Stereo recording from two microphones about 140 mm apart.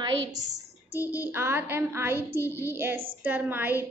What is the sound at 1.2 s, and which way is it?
Child singing, 15° right (ahead or behind).